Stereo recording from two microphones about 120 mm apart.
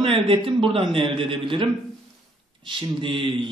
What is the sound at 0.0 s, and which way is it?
A man's voice, 45° right (ahead or behind).